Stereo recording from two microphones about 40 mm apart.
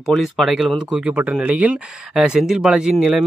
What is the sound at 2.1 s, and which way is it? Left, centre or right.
Speech, centre.